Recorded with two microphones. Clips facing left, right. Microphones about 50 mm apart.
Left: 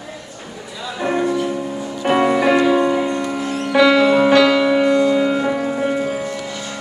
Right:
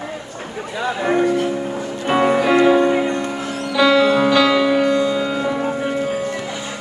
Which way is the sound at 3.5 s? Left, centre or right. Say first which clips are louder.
Left 5 dB; left.